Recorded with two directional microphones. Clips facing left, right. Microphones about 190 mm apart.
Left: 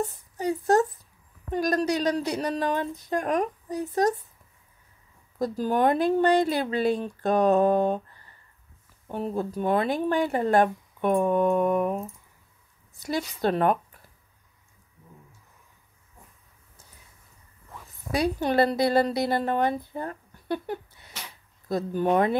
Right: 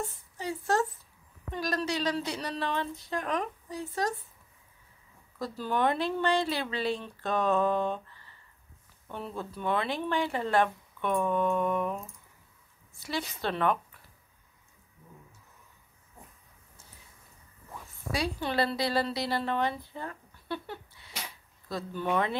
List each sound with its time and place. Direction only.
0.0 s a sound: 40° left (ahead or behind)
1.5 s speech: 45° left (ahead or behind)
5.4 s speech: 45° left (ahead or behind)
13.4 s speech: 40° left (ahead or behind)
17.8 s speech: 45° left (ahead or behind)
19.9 s a sound: 45° left (ahead or behind)
21.6 s speech: 45° left (ahead or behind)